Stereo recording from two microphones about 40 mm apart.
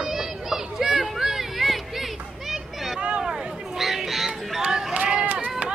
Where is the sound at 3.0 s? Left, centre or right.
Right.